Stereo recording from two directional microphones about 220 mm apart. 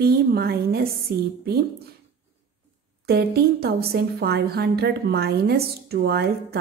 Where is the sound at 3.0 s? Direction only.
45° right (ahead or behind).